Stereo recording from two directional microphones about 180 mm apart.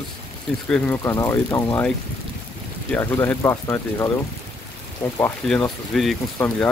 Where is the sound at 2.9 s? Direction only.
15° left (ahead or behind).